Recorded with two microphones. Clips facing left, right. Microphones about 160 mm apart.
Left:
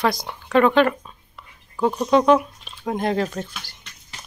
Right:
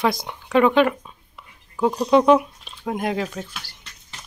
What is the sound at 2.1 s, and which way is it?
Speech, 10° right (ahead or behind).